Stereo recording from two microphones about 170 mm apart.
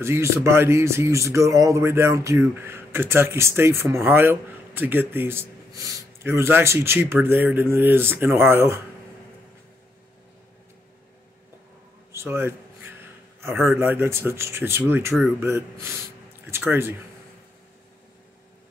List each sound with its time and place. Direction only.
0.0 s speech: 15° right (ahead or behind)
12.1 s a sound: 15° right (ahead or behind)
13.7 s speech: 15° right (ahead or behind)